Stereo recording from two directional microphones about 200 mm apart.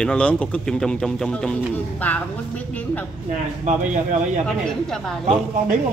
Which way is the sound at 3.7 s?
40° right (ahead or behind).